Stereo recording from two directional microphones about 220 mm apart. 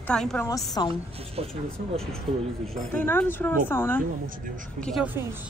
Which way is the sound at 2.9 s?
10° left (ahead or behind).